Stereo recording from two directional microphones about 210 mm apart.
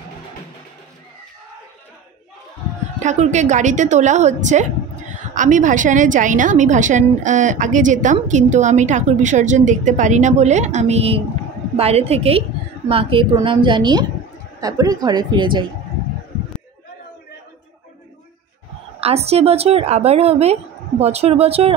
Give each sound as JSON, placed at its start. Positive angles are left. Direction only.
{"t": 3.0, "sound": "a woman's voice", "side_deg": -35}
{"t": 18.9, "sound": "a woman's voice", "side_deg": -30}